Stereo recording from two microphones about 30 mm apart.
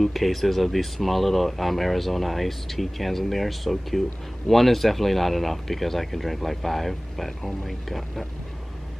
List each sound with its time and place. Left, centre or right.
0.0 s speech: centre